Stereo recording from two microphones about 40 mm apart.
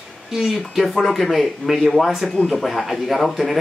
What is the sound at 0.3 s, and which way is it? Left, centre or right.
Speech, centre.